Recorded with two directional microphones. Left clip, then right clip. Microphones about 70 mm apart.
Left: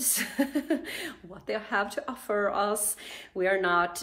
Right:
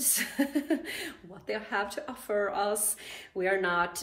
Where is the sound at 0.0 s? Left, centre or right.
Left.